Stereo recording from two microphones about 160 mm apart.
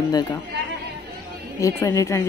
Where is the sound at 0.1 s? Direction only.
25° left (ahead or behind).